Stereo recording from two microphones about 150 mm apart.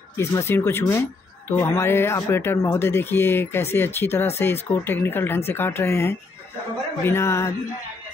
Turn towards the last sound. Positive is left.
turn(degrees=20)  # may be behind; listen again after turning